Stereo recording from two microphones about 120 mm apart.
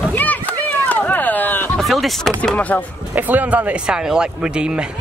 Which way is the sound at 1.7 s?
Centre (ahead or behind).